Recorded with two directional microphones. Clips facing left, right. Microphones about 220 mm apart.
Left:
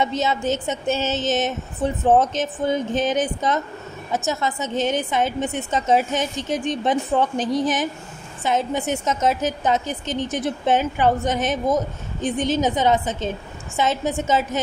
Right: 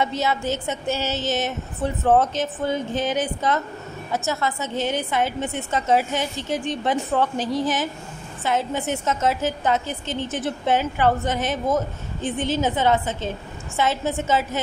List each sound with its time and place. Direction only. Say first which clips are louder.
0.0 s a woman's voice: left 2 dB; 20° left (ahead or behind)